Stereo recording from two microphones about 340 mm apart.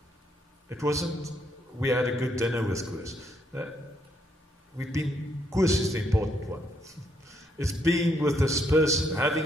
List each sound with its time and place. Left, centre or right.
0.7 s a man's voice: centre
5.5 s a man's voice: centre
6.1 s a sound: centre
7.6 s a man's voice: centre